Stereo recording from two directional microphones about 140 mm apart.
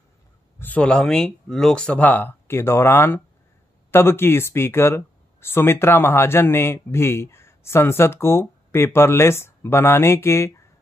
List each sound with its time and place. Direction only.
0.6 s speech: 10° left (ahead or behind)